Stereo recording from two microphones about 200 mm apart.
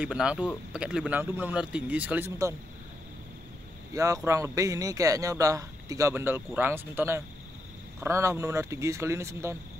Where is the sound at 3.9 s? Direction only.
15° right (ahead or behind).